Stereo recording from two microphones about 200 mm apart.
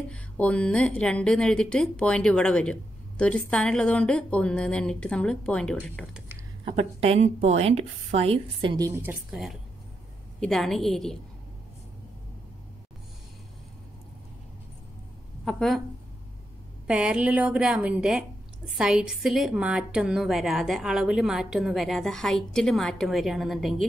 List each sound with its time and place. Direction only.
0.1 s a woman's voice: 5° left (ahead or behind)
6.6 s a woman's voice: 30° right (ahead or behind); by 11.1 s centre (ahead or behind)
15.4 s a woman's voice: centre (ahead or behind)
16.8 s a woman's voice: 5° right (ahead or behind)